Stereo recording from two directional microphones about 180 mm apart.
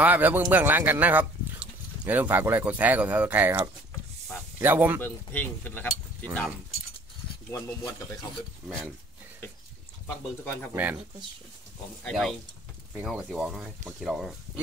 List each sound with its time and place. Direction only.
0.0 s speech: 10° right (ahead or behind)
5.0 s speech: 10° left (ahead or behind)
7.5 s speech: 15° left (ahead or behind)
8.6 s speech: 5° left (ahead or behind)
10.0 s speech: 10° left (ahead or behind)
10.7 s speech: 10° right (ahead or behind)
12.0 s speech: centre (ahead or behind)